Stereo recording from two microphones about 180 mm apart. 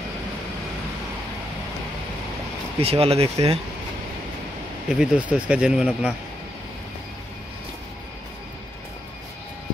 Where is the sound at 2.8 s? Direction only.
35° right (ahead or behind).